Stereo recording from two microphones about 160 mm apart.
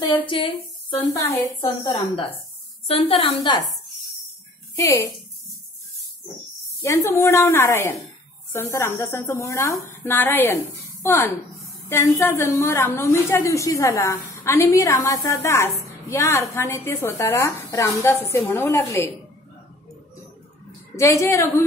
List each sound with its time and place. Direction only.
0.3 s a woman's voice: 35° left (ahead or behind)
4.7 s a woman's voice: 20° left (ahead or behind)
6.8 s a woman's voice: 15° left (ahead or behind)
20.9 s a woman's voice: 20° left (ahead or behind)